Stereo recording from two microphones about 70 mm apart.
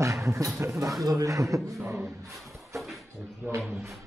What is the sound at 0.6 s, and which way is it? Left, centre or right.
A man's voice, right.